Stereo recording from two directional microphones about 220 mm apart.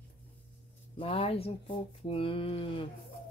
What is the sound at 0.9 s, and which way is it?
Speech, 25° left (ahead or behind).